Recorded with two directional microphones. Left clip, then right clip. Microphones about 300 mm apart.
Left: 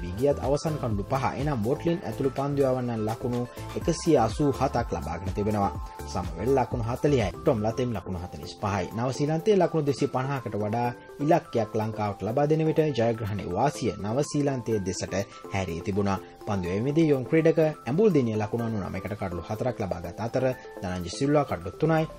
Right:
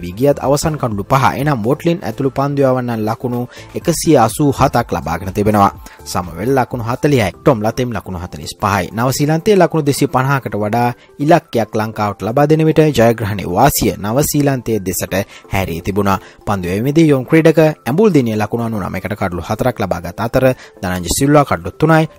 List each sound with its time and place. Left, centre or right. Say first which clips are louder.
0.2 s speech: right 12 dB; right